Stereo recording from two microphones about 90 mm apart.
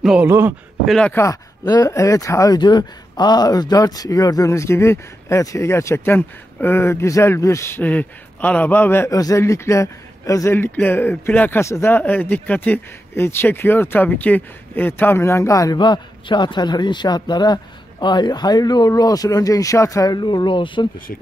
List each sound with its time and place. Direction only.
0.2 s speech: 25° right (ahead or behind)
0.8 s speech: 5° left (ahead or behind)
1.1 s speech: 35° left (ahead or behind)
1.6 s speech: 50° left (ahead or behind)
1.9 s speech: 35° left (ahead or behind)
2.6 s speech: 55° left (ahead or behind); by 9.1 s 25° left (ahead or behind)
9.1 s speech: 40° left (ahead or behind)
10.5 s speech: 25° left (ahead or behind)
11.6 s speech: 35° left (ahead or behind)
11.9 s speech: 20° left (ahead or behind); by 15.8 s 40° left (ahead or behind)
15.8 s a man's voice: 55° left (ahead or behind); by 20.2 s 35° left (ahead or behind)
20.2 s speech: 55° left (ahead or behind)